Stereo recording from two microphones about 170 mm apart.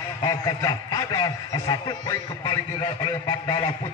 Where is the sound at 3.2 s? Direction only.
25° left (ahead or behind).